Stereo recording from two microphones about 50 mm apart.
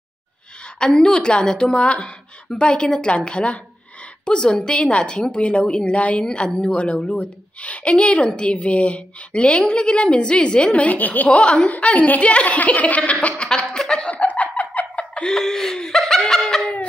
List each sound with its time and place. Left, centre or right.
0.7 s a woman's voice: centre
13.4 s a sound: centre
14.1 s chicken: left
15.2 s laughter: centre